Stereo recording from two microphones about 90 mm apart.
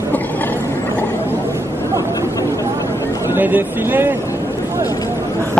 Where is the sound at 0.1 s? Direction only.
20° left (ahead or behind).